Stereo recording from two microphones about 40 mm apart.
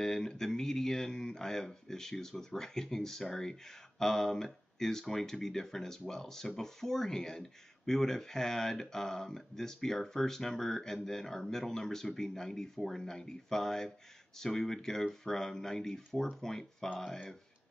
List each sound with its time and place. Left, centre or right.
0.0 s speech: centre